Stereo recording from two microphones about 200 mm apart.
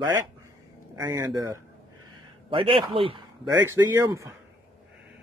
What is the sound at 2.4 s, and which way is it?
Speech, 25° right (ahead or behind).